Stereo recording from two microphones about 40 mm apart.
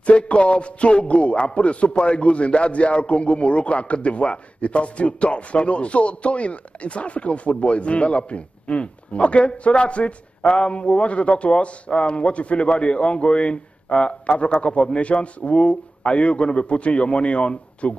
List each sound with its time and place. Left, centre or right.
0.0 s a man's voice: left